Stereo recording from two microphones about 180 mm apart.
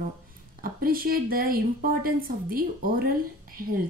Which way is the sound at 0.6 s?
55° right (ahead or behind).